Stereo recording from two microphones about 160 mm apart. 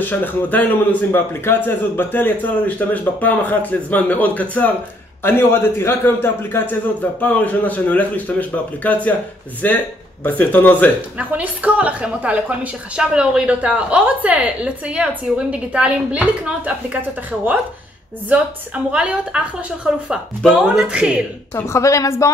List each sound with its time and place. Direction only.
0.0 s a man's voice: 10° left (ahead or behind)
11.1 s a woman's voice: 10° right (ahead or behind)
18.9 s a woman's voice: 5° right (ahead or behind)
21.5 s a woman's voice: 15° left (ahead or behind)